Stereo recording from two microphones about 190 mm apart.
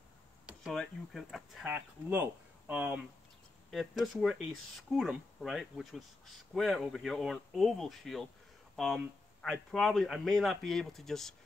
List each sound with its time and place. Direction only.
0.5 s speech: centre (ahead or behind)